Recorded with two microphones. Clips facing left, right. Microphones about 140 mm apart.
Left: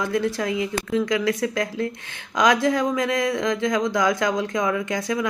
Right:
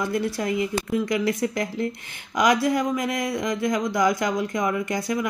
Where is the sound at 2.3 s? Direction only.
90° left.